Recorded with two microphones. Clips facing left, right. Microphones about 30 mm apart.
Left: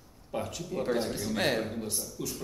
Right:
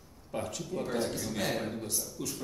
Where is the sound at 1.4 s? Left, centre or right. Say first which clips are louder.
Left 5 dB; left.